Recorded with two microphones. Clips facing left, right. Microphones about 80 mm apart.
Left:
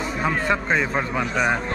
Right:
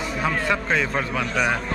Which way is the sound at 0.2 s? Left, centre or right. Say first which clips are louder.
Left 1 dB; centre.